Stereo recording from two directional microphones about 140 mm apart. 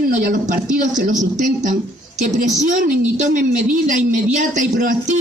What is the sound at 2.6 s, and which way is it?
A woman's voice, 65° right (ahead or behind).